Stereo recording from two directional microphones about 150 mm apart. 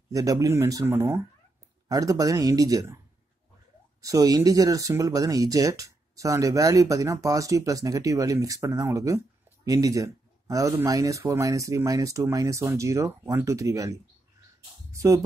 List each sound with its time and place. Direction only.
0.1 s speech: 25° right (ahead or behind)
4.0 s speech: 25° right (ahead or behind)